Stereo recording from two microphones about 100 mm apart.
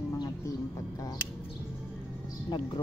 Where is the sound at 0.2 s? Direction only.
40° left (ahead or behind).